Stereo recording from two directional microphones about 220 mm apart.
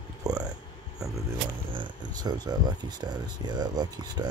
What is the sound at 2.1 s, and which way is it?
Speech, 20° right (ahead or behind).